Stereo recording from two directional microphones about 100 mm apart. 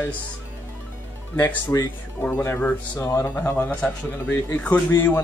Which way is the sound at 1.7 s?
25° left (ahead or behind).